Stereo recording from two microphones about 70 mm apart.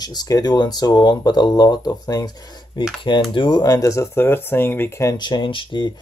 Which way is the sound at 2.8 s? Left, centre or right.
Left.